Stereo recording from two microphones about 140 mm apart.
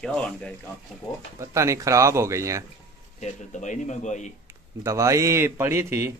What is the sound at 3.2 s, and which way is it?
A man's voice, 60° left (ahead or behind).